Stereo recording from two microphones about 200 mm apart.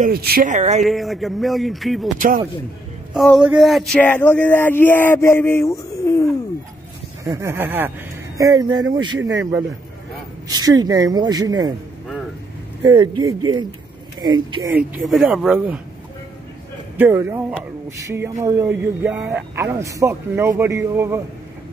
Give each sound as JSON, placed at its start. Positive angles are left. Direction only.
{"t": 0.0, "sound": "speech", "side_deg": -50}
{"t": 0.8, "sound": "a man's voice", "side_deg": 0}
{"t": 2.1, "sound": "speech", "side_deg": -40}
{"t": 3.1, "sound": "speech", "side_deg": 0}
{"t": 7.2, "sound": "a man's voice", "side_deg": -15}
{"t": 10.5, "sound": "speech", "side_deg": -20}
{"t": 12.8, "sound": "speech", "side_deg": -25}
{"t": 14.7, "sound": "a man's voice", "side_deg": -5}
{"t": 16.9, "sound": "a man's voice", "side_deg": -10}